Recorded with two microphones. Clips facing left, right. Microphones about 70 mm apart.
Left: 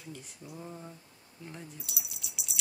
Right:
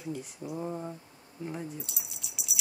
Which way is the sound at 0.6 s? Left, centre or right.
Right.